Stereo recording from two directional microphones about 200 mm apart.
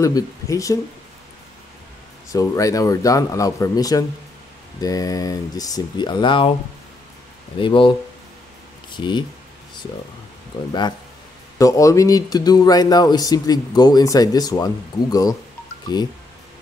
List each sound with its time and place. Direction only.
0.0 s speech: 15° left (ahead or behind)
2.3 s speech: 15° left (ahead or behind)
7.6 s speech: 25° left (ahead or behind)
8.9 s speech: 20° left (ahead or behind)
11.5 s speech: 15° left (ahead or behind)